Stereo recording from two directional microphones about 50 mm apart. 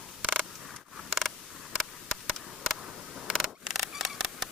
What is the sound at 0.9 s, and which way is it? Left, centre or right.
Creak, centre.